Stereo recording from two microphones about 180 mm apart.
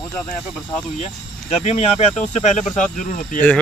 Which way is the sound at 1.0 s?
40° left (ahead or behind).